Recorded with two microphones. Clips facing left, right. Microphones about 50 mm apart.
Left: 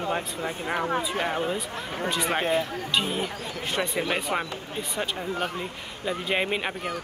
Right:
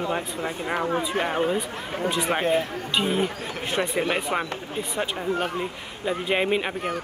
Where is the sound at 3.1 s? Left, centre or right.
Right.